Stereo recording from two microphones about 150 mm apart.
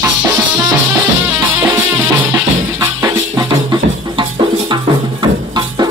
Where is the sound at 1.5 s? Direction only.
10° right (ahead or behind).